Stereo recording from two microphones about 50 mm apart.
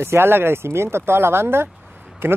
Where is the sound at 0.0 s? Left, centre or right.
Right.